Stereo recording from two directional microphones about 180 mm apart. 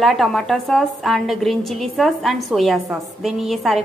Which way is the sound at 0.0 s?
Centre (ahead or behind).